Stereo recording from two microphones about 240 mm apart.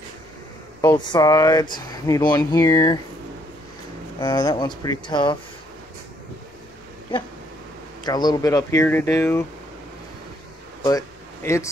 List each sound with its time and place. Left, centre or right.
0.7 s speech: centre
4.2 s speech: centre
8.0 s speech: centre
10.8 s a sound: centre